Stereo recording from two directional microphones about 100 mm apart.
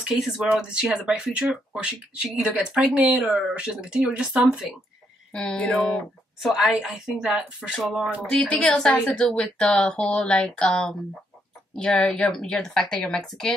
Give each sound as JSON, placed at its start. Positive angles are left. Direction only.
{"t": 0.1, "sound": "speech", "side_deg": -5}
{"t": 5.3, "sound": "a woman's voice", "side_deg": 5}
{"t": 8.3, "sound": "a woman's voice", "side_deg": 10}